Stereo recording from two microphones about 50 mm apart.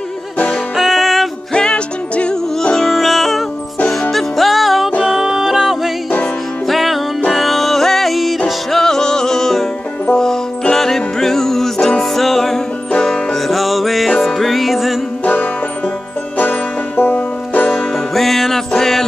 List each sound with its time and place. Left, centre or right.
0.7 s music: centre
1.5 s music: centre
2.8 s music: centre
10.7 s music: centre
16.3 s banjo: left
17.6 s music: centre